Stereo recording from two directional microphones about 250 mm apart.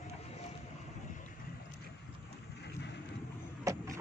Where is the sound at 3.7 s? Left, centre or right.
Centre.